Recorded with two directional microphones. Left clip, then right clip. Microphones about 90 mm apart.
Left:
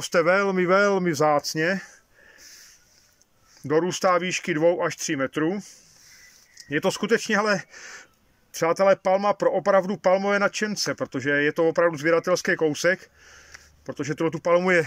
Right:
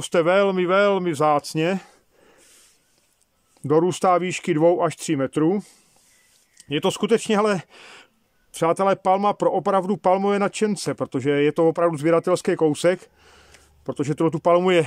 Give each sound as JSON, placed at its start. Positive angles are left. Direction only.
{"t": 0.0, "sound": "speech", "side_deg": -30}
{"t": 1.4, "sound": "speech", "side_deg": -30}
{"t": 3.6, "sound": "speech", "side_deg": -45}
{"t": 6.6, "sound": "speech", "side_deg": -30}
{"t": 7.8, "sound": "a sound", "side_deg": -20}
{"t": 8.5, "sound": "speech", "side_deg": -35}